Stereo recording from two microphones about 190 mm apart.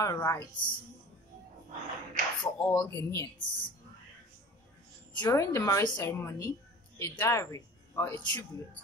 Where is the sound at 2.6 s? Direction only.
15° left (ahead or behind).